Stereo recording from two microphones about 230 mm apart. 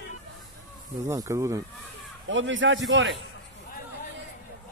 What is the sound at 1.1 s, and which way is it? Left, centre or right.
Speech, centre.